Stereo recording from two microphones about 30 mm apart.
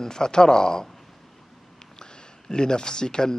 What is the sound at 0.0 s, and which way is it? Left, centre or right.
Speech, left.